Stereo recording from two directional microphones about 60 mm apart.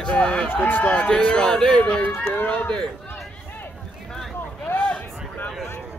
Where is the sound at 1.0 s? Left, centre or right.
Centre.